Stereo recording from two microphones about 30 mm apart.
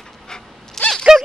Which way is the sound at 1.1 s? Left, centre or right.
Right.